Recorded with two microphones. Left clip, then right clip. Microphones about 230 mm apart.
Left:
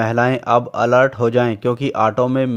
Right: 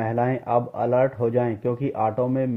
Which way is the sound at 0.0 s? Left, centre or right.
Left.